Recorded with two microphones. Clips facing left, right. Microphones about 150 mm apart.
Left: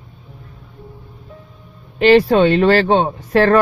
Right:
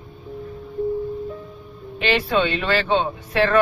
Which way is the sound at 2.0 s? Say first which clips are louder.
Left 10 dB; 45° left (ahead or behind).